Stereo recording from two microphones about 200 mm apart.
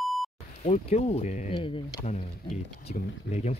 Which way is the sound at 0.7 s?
30° left (ahead or behind).